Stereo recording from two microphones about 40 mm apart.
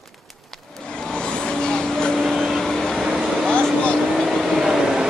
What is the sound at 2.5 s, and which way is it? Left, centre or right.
Vehicle, centre.